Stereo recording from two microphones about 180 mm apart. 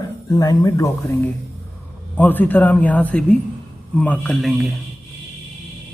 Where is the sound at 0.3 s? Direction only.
20° left (ahead or behind); by 4.7 s centre (ahead or behind).